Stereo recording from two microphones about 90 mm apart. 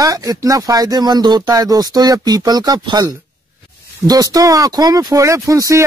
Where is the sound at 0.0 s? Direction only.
40° right (ahead or behind).